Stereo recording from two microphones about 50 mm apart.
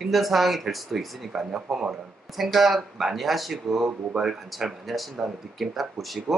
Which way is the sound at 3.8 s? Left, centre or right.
Centre.